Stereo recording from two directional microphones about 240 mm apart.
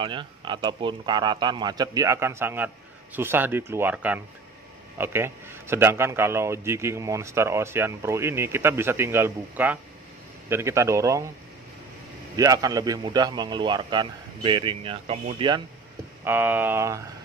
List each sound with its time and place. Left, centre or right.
0.0 s a man's voice: centre
12.4 s a man's voice: centre
16.3 s a man's voice: centre